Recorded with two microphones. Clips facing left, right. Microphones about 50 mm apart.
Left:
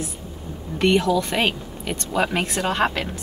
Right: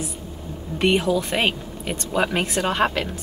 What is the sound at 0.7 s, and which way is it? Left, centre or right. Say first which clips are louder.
Speech: left 1 dB; centre.